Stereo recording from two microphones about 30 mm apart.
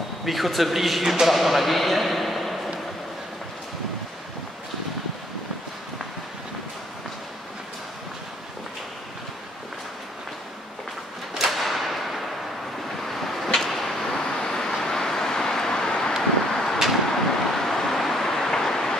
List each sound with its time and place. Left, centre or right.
0.2 s a man's voice: centre
11.3 s whip: centre
13.0 s vehicle: centre